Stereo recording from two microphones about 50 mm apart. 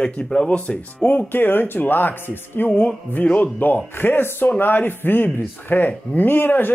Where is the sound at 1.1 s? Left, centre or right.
Left.